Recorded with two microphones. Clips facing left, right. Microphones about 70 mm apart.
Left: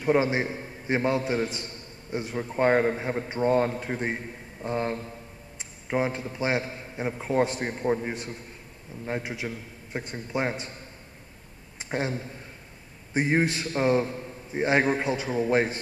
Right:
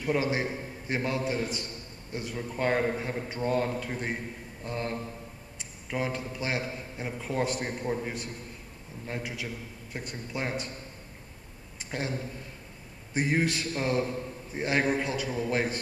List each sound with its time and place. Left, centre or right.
0.0 s a man's voice: left
5.6 s a sound: left
6.3 s a man's voice: left
11.9 s a man's voice: left